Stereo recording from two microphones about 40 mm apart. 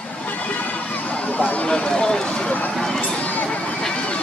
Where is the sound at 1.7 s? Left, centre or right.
Left.